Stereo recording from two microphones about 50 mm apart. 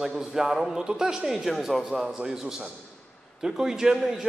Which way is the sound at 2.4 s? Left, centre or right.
Centre.